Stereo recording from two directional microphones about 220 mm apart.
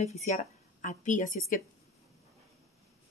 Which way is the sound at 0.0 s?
30° left (ahead or behind).